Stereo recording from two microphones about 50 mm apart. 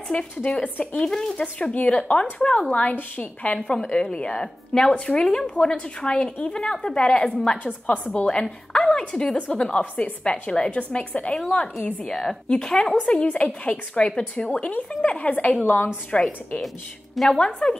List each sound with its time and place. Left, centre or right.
0.1 s a woman's voice: left
1.4 s a woman's voice: left
3.6 s a woman's voice: centre
7.6 s a woman's voice: left
12.1 s a woman's voice: centre; by 15.5 s left
15.6 s a woman's voice: left
16.1 s a woman's voice: centre
16.6 s a woman's voice: centre
17.4 s a woman's voice: centre